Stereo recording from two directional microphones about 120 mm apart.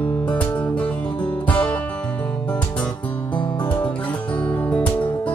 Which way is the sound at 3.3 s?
40° left (ahead or behind).